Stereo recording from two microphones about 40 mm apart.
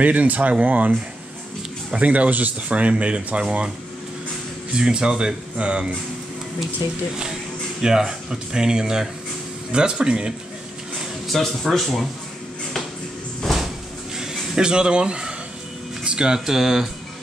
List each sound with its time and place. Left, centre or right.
0.0 s speech: right
2.0 s speech: right
4.7 s speech: right
7.8 s speech: centre
11.3 s speech: centre
13.4 s cupboard open or close: centre
14.5 s speech: right